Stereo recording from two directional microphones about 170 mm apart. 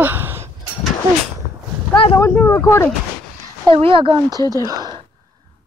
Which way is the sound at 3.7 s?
30° right (ahead or behind).